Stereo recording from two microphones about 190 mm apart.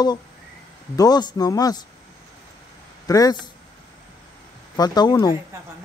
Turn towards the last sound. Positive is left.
turn(degrees=20)  # may be behind; listen again after turning